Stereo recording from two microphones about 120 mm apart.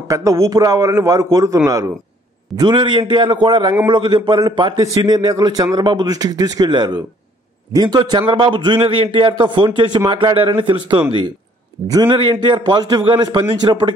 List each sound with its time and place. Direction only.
0.1 s a man's voice: 25° right (ahead or behind)
2.5 s a man's voice: 40° right (ahead or behind)